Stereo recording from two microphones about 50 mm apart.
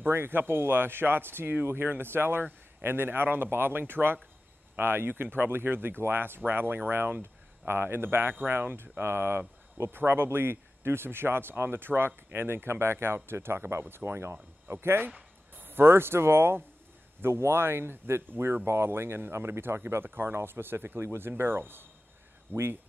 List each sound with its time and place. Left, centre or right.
0.0 s speech: right
15.5 s speech: right